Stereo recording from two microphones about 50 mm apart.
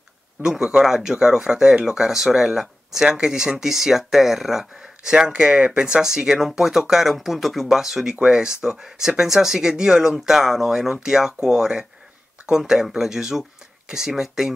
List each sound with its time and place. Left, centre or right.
0.4 s speech: centre